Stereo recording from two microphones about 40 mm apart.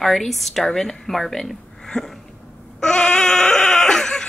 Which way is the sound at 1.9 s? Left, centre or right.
Centre.